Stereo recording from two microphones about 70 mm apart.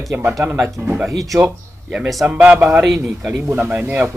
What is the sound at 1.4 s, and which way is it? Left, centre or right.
A man's voice, centre.